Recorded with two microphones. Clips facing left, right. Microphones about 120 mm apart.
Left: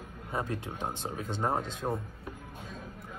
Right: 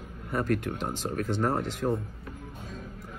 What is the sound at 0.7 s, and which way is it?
Speech, 15° left (ahead or behind).